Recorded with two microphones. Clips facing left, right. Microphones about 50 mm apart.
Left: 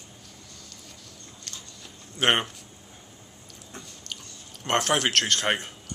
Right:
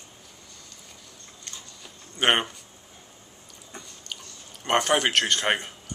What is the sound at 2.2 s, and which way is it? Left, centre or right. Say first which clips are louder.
Speech: right 1 dB; centre.